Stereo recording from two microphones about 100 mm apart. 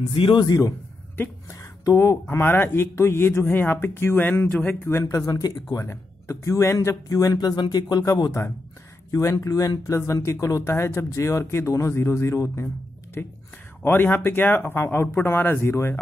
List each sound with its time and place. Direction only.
0.1 s speech: 55° left (ahead or behind)
0.5 s a man's voice: 35° left (ahead or behind)
5.1 s a man's voice: 35° left (ahead or behind)